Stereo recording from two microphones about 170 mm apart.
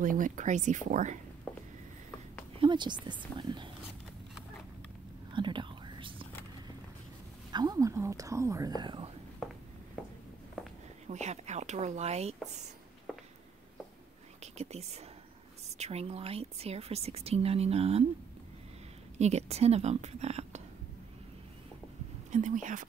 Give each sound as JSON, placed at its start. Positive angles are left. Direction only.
{"t": 0.0, "sound": "speech", "side_deg": -50}
{"t": 1.5, "sound": "a sound", "side_deg": 10}
{"t": 2.6, "sound": "speech", "side_deg": -25}
{"t": 5.3, "sound": "whispering", "side_deg": -30}
{"t": 7.5, "sound": "speech", "side_deg": -20}
{"t": 11.1, "sound": "speech", "side_deg": -40}
{"t": 13.1, "sound": "a sound", "side_deg": -5}
{"t": 14.4, "sound": "speech", "side_deg": -40}
{"t": 19.1, "sound": "a woman's voice", "side_deg": -40}
{"t": 22.3, "sound": "speech", "side_deg": -45}